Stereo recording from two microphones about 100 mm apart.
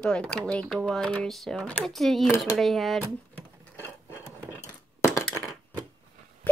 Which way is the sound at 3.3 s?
20° left (ahead or behind).